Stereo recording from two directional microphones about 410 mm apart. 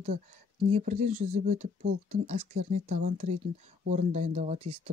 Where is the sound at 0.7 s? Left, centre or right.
Centre.